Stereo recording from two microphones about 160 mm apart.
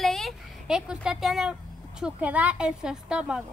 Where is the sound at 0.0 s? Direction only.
Centre (ahead or behind).